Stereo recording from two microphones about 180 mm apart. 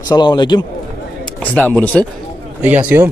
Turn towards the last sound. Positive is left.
turn(degrees=-10)  # may be behind; listen again after turning